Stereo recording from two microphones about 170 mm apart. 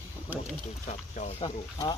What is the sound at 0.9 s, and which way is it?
Speech, 45° left (ahead or behind).